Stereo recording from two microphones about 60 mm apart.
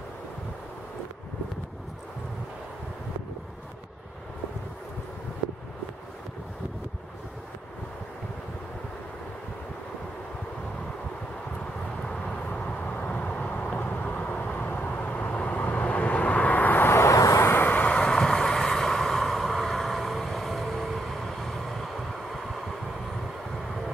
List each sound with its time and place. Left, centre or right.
12.1 s vehicle: centre
16.9 s vehicle: left
17.5 s vehicle: left
18.2 s vehicle: centre